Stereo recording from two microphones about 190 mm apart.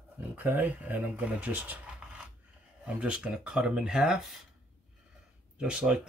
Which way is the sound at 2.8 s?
5° right (ahead or behind).